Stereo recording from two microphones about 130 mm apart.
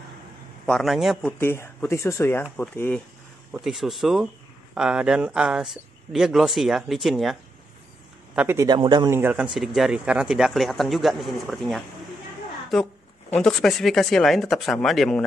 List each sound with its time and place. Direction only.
0.7 s speech: centre (ahead or behind)
1.4 s speech: 20° left (ahead or behind)
3.6 s speech: centre (ahead or behind)
8.4 s a man's voice: 15° right (ahead or behind)
8.6 s a man's voice: 35° right (ahead or behind)
9.1 s a man's voice: 15° right (ahead or behind)
9.4 s speech: 5° right (ahead or behind)
13.3 s speech: 5° left (ahead or behind)